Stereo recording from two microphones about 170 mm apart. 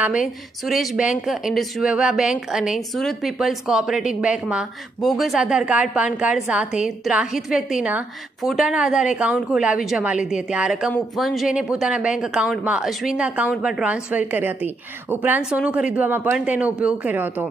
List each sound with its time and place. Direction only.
0.7 s a woman's voice: 5° right (ahead or behind)